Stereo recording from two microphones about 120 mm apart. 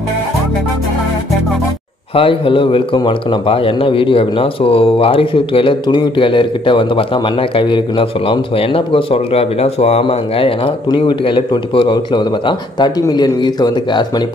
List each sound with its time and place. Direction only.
2.1 s a man's voice: 50° left (ahead or behind)